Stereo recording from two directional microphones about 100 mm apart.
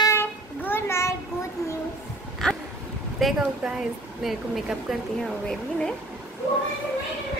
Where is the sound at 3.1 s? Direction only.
5° right (ahead or behind).